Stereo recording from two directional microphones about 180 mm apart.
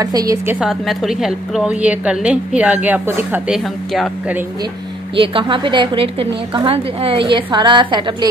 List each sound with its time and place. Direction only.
0.0 s a woman's voice: 20° right (ahead or behind)
0.6 s a woman's voice: centre (ahead or behind)
5.1 s a woman's voice: 30° right (ahead or behind)